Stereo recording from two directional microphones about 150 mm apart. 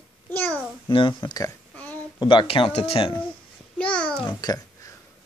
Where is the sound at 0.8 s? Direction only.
35° left (ahead or behind).